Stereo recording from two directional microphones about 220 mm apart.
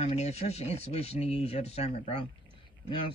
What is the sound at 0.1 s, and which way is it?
Speech, 30° left (ahead or behind).